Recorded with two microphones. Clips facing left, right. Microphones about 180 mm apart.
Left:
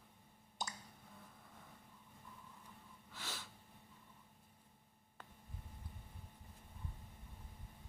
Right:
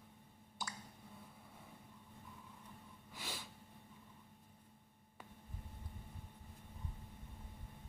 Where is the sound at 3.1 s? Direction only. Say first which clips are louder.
Right 1 dB; 10° right (ahead or behind).